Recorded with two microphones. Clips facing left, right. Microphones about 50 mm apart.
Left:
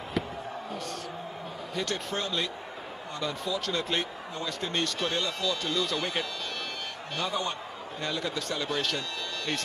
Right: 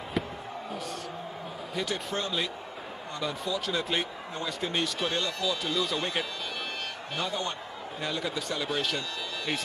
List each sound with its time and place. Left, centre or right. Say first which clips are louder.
0.2 s basketball bounce: even; centre
0.7 s a sound: even; centre
1.8 s a man's voice: even; centre